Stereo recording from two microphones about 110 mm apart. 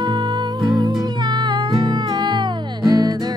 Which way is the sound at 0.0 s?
40° right (ahead or behind).